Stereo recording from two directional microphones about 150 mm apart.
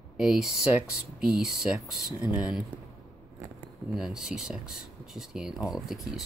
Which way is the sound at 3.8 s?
Centre (ahead or behind).